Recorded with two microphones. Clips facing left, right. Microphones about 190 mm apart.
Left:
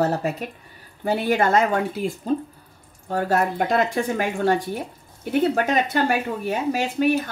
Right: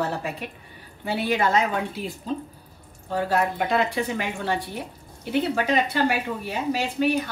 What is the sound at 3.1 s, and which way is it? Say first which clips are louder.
A woman's voice: left 2 dB; 45° left (ahead or behind).